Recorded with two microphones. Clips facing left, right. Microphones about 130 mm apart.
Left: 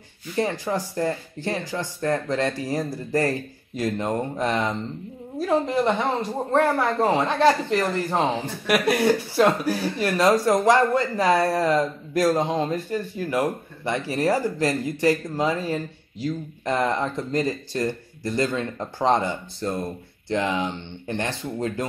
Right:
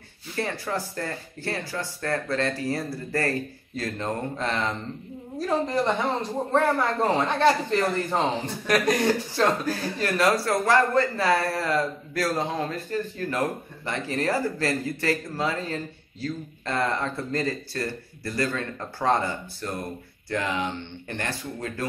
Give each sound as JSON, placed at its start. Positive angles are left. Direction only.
{"t": 0.4, "sound": "speech", "side_deg": 15}
{"t": 6.5, "sound": "speech", "side_deg": 25}